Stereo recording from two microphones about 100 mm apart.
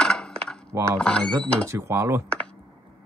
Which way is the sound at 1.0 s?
10° left (ahead or behind).